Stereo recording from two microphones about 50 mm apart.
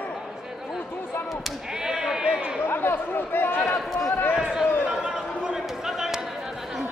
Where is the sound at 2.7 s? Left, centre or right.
Left.